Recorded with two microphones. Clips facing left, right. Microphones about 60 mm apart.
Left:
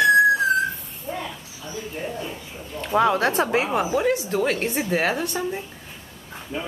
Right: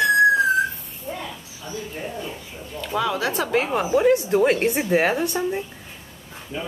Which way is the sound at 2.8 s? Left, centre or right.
Left.